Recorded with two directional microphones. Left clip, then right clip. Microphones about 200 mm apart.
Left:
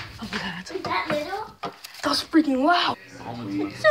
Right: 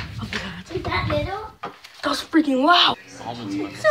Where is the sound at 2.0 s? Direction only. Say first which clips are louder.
Right 1 dB; centre (ahead or behind).